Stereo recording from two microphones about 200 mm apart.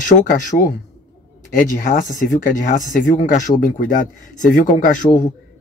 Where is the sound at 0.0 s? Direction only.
40° left (ahead or behind).